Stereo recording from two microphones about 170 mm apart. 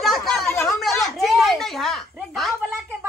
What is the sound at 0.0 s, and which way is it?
Chatter, centre (ahead or behind).